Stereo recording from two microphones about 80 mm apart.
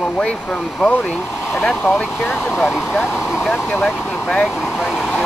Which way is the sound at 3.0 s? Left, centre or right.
Centre.